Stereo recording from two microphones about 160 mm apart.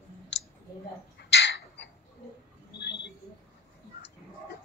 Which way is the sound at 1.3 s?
90° left.